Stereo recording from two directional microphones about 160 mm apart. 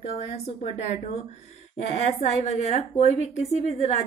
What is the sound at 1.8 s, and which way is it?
A woman's voice, 45° left (ahead or behind).